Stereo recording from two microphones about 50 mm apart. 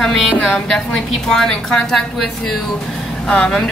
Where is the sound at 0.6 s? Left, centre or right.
Centre.